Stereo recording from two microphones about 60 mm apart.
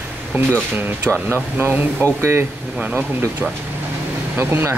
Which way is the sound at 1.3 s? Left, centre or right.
Right.